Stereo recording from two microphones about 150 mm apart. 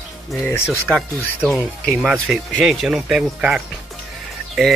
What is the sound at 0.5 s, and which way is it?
Speech, 15° left (ahead or behind).